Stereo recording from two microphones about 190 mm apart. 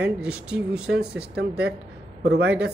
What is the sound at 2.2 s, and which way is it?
Speech, 60° right (ahead or behind).